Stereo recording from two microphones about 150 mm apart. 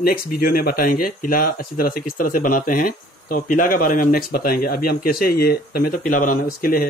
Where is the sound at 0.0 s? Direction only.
80° left.